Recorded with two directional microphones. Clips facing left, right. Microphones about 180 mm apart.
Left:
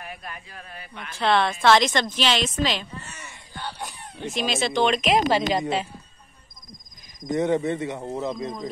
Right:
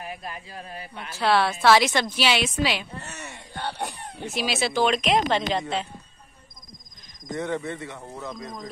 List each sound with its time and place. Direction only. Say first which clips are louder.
0.0 s a man's voice: right 3 dB; 25° right (ahead or behind)
1.1 s a woman's voice: even; 5° right (ahead or behind)
3.5 s a sound: right 3 dB; 60° right (ahead or behind)
4.2 s speech: left 1 dB; 5° right (ahead or behind)
7.2 s speech: left 6 dB; 20° left (ahead or behind)